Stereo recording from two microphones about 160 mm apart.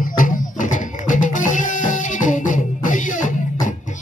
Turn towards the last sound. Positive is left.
turn(degrees=55)  # may be behind; listen again after turning